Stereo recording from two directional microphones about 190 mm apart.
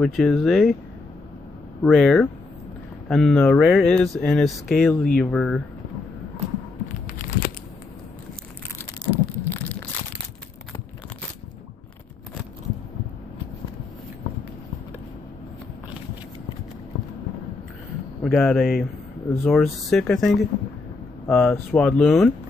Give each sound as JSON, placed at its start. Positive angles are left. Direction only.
{"t": 0.0, "sound": "speech", "side_deg": 0}
{"t": 1.8, "sound": "speech", "side_deg": 5}
{"t": 7.1, "sound": "a sound", "side_deg": 50}
{"t": 9.0, "sound": "crushing", "side_deg": 10}
{"t": 18.2, "sound": "speech", "side_deg": 5}
{"t": 19.2, "sound": "speech", "side_deg": 10}
{"t": 19.5, "sound": "speech", "side_deg": 0}